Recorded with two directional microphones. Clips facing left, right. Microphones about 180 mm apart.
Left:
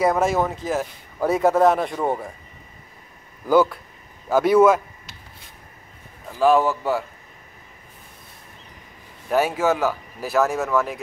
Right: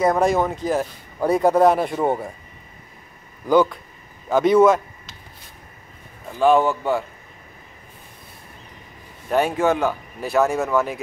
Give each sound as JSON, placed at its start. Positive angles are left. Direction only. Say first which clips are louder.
{"t": 0.0, "sound": "speech", "louder": "right 1 dB", "side_deg": 5}
{"t": 3.4, "sound": "speech", "louder": "even", "side_deg": 5}
{"t": 6.3, "sound": "speech", "louder": "right 1 dB", "side_deg": 0}
{"t": 9.3, "sound": "speech", "louder": "right 1 dB", "side_deg": 5}